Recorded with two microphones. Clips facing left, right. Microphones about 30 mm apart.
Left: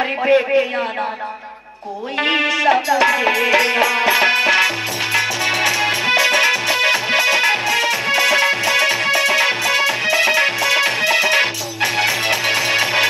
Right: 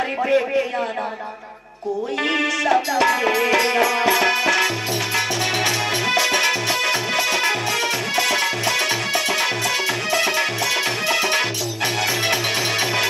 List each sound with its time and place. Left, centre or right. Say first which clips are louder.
2.1 s music: left 6 dB; left
12.1 s music: left 3 dB; centre